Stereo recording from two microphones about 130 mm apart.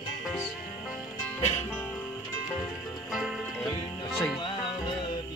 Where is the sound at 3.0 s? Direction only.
Centre (ahead or behind).